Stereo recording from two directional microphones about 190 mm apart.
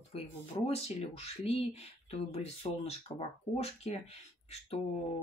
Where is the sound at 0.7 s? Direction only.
35° left (ahead or behind).